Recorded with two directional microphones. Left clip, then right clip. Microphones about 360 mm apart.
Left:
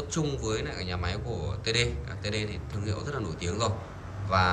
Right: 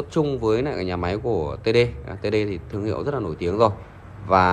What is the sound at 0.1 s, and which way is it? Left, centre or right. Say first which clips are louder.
A man's voice: right 11 dB; centre.